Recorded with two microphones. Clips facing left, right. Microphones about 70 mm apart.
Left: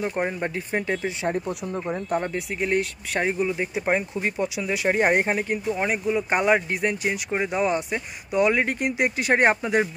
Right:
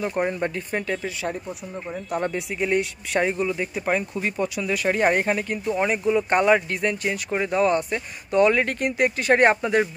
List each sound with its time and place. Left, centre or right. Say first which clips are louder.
0.0 s speech: right 2 dB; centre
2.3 s speech: right 1 dB; centre
3.3 s speech: even; centre
5.8 s speech: right 6 dB; centre